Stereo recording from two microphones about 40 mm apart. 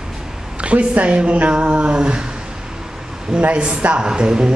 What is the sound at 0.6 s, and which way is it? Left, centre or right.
A man's voice, right.